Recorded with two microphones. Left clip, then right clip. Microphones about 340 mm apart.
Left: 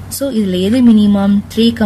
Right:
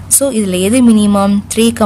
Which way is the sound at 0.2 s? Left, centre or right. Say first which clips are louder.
Right 1 dB; right.